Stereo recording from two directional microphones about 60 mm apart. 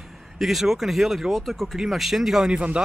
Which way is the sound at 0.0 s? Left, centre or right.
Centre.